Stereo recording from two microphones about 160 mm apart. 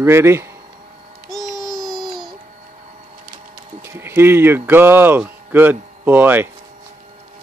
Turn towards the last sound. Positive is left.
turn(degrees=-10)  # may be behind; listen again after turning